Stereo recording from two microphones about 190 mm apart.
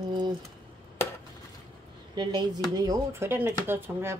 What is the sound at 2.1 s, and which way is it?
Speech, 25° right (ahead or behind).